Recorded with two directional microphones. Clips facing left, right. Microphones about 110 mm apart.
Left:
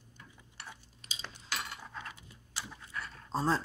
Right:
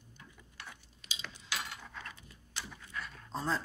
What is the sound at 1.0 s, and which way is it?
Cutlery, 40° left (ahead or behind).